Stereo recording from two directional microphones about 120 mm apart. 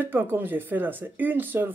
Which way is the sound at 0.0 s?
15° right (ahead or behind).